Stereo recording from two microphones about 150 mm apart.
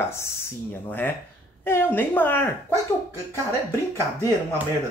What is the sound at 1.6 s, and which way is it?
Speech, 15° left (ahead or behind).